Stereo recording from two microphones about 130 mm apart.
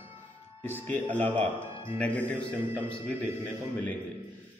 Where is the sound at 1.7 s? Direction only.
40° left (ahead or behind).